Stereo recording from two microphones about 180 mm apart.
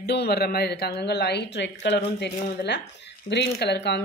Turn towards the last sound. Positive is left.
turn(degrees=70)  # may be behind; listen again after turning